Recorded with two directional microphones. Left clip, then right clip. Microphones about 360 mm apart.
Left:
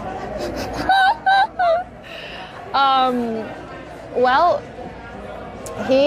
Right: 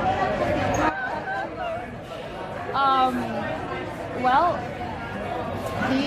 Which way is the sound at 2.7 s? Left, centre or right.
Left.